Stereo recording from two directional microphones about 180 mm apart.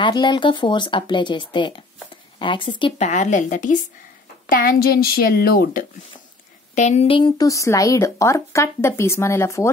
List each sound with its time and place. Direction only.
0.0 s speech: 25° left (ahead or behind)
3.1 s speech: 40° left (ahead or behind)
4.6 s a woman's voice: 55° left (ahead or behind)
6.7 s speech: 40° left (ahead or behind); by 9.7 s 15° left (ahead or behind)